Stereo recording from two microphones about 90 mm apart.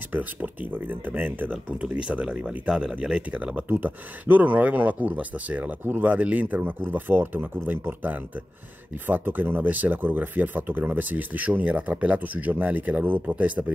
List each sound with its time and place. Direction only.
0.1 s speech: 20° right (ahead or behind)